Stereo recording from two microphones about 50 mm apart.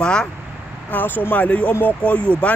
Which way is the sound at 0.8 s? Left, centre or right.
Left.